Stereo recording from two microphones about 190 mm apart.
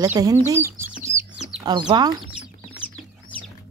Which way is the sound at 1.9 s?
20° right (ahead or behind).